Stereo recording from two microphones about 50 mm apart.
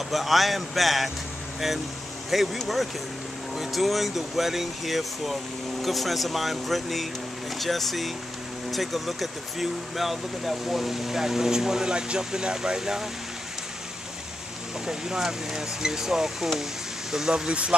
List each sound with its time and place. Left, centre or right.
0.1 s speech: centre
2.3 s speech: centre
14.9 s speech: centre
17.5 s speech: centre